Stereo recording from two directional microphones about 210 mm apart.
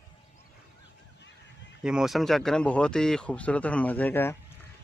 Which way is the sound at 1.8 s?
5° right (ahead or behind).